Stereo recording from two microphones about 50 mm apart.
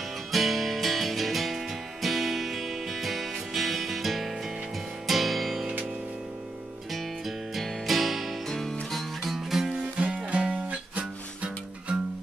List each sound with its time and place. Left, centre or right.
0.3 s music: centre
6.9 s music: centre
8.5 s music: centre
8.9 s music: centre
9.8 s music: centre